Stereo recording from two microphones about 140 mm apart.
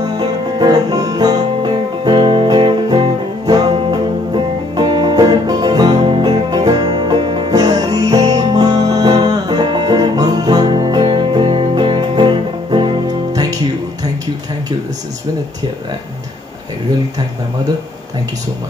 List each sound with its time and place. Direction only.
0.0 s music: 30° right (ahead or behind)